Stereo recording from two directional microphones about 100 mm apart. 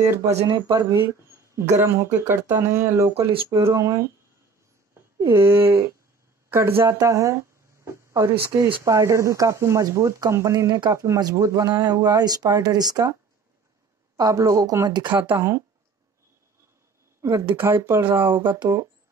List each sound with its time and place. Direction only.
0.5 s speech: 40° right (ahead or behind)
0.9 s speech: 30° right (ahead or behind)
5.2 s speech: 25° right (ahead or behind)
14.1 s speech: 35° right (ahead or behind)
15.1 s speech: 20° right (ahead or behind)
17.5 s speech: 20° right (ahead or behind)